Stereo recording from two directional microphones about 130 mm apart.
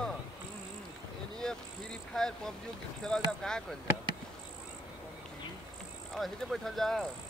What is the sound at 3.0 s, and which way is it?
Speech, 5° left (ahead or behind).